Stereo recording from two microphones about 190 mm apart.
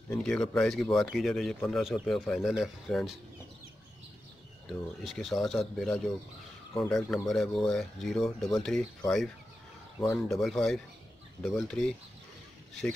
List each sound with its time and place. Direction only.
0.1 s speech: 5° left (ahead or behind)
4.6 s speech: centre (ahead or behind)
9.9 s speech: 15° left (ahead or behind)
10.4 s speech: centre (ahead or behind)